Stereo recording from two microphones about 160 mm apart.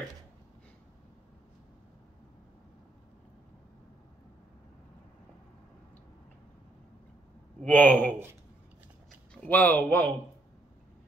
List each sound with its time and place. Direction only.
7.6 s speech: 10° left (ahead or behind)
9.3 s a man's voice: 10° left (ahead or behind)